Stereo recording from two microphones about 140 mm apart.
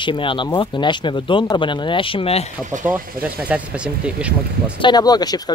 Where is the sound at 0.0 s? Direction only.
35° left (ahead or behind).